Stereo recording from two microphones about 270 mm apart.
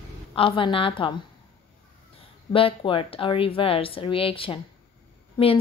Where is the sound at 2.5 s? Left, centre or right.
Centre.